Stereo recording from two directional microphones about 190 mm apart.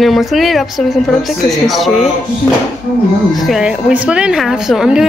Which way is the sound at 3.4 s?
Centre (ahead or behind).